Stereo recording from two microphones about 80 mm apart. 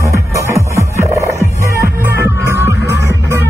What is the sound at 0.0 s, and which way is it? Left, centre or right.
Music, right.